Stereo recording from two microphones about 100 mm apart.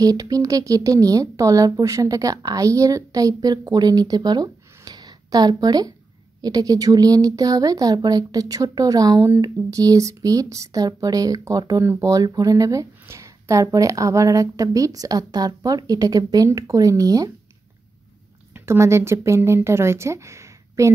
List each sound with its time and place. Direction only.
0.0 s speech: 40° right (ahead or behind)
18.5 s speech: 25° right (ahead or behind)